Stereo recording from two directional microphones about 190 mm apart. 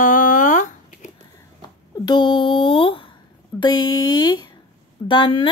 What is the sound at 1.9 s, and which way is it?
Speech, 20° left (ahead or behind).